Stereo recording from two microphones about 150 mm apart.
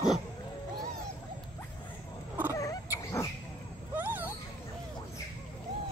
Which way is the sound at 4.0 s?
10° right (ahead or behind).